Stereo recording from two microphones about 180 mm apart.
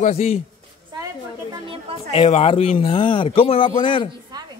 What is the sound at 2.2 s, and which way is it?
A man's voice, 35° left (ahead or behind).